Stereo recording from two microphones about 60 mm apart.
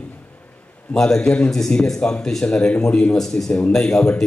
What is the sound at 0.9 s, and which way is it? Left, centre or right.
A man's voice, centre.